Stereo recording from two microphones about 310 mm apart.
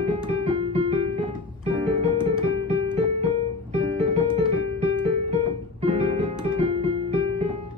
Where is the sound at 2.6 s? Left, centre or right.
Centre.